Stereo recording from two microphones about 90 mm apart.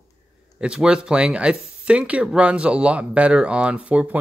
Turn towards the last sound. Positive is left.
turn(degrees=-15)  # may be behind; listen again after turning